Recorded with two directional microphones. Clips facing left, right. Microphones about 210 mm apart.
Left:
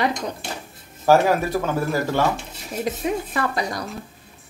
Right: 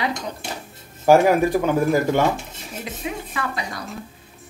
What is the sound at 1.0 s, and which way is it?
Speech, 15° right (ahead or behind).